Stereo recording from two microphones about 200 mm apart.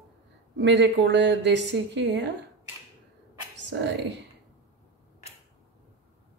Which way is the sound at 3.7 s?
60° right (ahead or behind).